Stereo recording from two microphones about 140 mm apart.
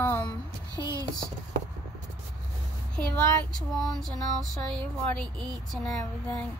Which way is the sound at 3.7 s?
Centre (ahead or behind).